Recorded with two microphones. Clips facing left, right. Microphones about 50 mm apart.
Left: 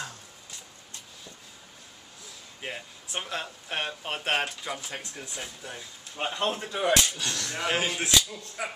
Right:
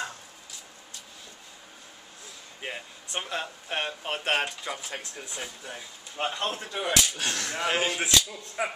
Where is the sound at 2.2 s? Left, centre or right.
Centre.